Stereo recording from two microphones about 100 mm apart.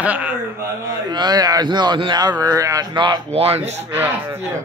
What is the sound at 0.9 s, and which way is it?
Speech, 45° right (ahead or behind).